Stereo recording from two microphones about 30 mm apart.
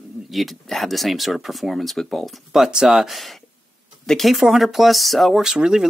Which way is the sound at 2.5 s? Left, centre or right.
Centre.